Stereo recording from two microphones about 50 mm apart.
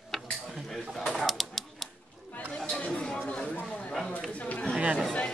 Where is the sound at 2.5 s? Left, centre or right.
Centre.